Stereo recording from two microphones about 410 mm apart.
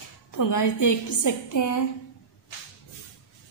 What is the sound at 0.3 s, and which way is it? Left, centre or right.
A woman's voice, left.